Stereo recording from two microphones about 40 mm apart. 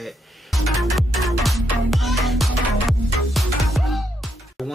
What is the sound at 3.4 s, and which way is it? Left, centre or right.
Music, centre.